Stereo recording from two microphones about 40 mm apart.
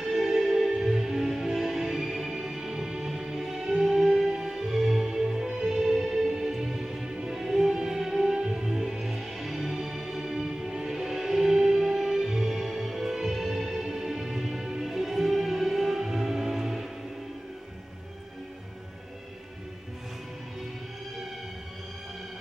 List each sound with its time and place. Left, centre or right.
0.1 s music: centre